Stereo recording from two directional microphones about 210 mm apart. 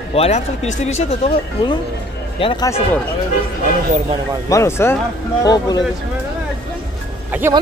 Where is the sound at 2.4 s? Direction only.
20° left (ahead or behind).